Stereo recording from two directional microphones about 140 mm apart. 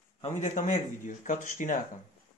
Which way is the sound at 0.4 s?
65° left (ahead or behind).